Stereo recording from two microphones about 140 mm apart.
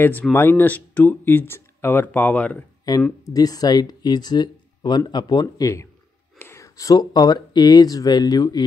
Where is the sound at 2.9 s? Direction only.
30° left (ahead or behind).